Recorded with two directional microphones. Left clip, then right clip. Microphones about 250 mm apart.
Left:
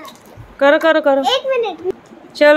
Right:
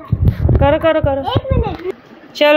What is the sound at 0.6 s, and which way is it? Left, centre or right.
Speech, left.